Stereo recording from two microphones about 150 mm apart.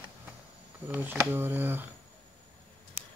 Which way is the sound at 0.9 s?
15° right (ahead or behind).